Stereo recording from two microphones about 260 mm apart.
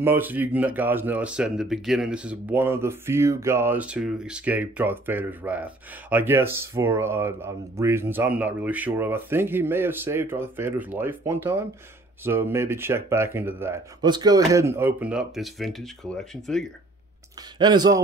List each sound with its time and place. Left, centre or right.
0.0 s speech: centre
17.6 s speech: centre